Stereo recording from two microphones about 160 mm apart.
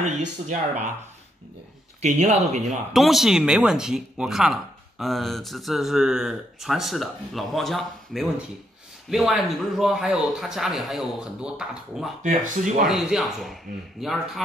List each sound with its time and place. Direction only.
0.0 s speech: 50° right (ahead or behind)
2.0 s speech: 40° right (ahead or behind)
2.9 s speech: centre (ahead or behind)
12.2 s speech: 55° right (ahead or behind)
12.8 s speech: centre (ahead or behind)